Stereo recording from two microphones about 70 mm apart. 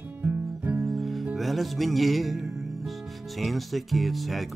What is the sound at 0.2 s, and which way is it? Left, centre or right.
Music, right.